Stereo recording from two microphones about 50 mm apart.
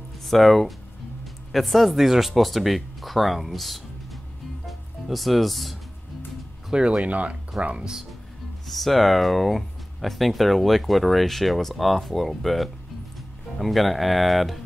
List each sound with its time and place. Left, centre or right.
0.3 s speech: centre
4.6 s music: centre
6.7 s speech: centre
7.5 s speech: centre
8.6 s speech: centre